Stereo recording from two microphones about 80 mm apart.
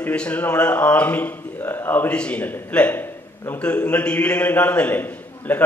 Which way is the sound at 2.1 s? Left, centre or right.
Centre.